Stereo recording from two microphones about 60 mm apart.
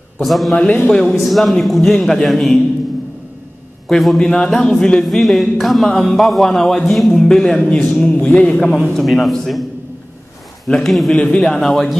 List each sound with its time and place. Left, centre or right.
0.2 s a man's voice: centre
3.9 s a man's voice: centre
8.2 s speech: left
8.5 s a man's voice: centre
10.9 s a man's voice: centre
11.1 s a man's voice: centre